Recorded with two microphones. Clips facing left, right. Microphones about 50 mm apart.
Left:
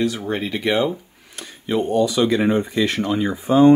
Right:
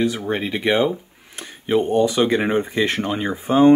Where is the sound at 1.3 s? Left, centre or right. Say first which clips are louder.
Right 3 dB; right.